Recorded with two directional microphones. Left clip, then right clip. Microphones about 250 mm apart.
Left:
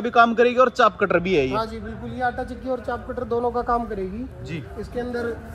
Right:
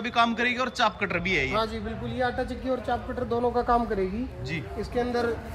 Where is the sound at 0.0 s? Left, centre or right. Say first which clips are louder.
Left 8 dB; centre.